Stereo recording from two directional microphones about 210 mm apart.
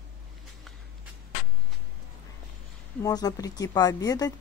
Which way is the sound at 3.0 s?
15° left (ahead or behind).